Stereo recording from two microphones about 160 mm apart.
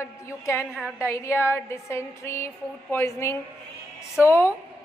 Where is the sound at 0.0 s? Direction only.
15° left (ahead or behind).